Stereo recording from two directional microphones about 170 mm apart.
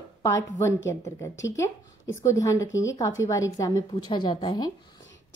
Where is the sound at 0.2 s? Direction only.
15° left (ahead or behind).